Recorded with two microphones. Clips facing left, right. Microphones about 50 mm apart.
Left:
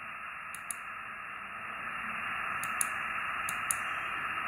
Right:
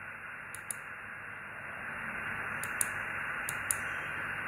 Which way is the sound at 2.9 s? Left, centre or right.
Centre.